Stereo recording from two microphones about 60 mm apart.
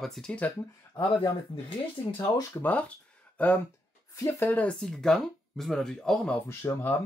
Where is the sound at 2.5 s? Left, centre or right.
Left.